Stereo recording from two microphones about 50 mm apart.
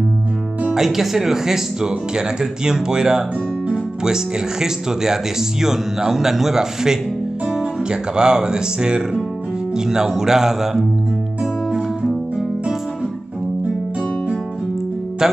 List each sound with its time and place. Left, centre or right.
0.7 s speech: centre
11.7 s music: centre